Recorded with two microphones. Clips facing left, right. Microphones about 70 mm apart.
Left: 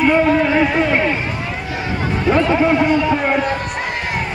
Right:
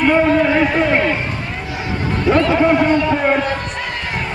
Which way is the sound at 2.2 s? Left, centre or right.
Centre.